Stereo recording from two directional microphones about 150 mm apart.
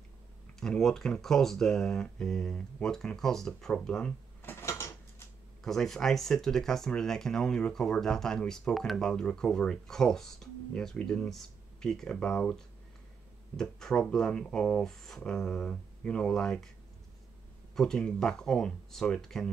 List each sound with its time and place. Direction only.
0.6 s speech: 5° left (ahead or behind)
4.4 s dishes: 15° left (ahead or behind)
5.6 s speech: centre (ahead or behind)
17.7 s speech: 5° left (ahead or behind)